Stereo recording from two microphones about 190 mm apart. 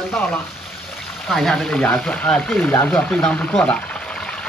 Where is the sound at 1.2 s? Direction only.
Centre (ahead or behind).